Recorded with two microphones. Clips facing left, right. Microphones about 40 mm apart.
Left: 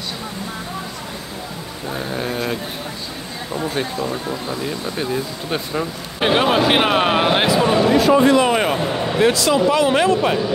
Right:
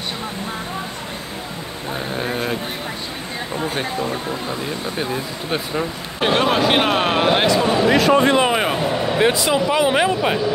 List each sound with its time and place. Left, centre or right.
2.0 s vehicle: centre
3.5 s speech: centre
4.9 s speech: centre
6.2 s speech: centre
7.9 s speech: right
8.5 s speech: centre
9.2 s speech: centre